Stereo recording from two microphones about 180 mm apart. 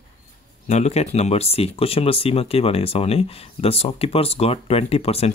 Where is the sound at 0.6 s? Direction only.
40° left (ahead or behind).